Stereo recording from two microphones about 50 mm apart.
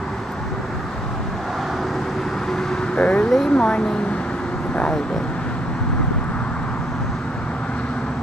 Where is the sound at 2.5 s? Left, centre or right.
Centre.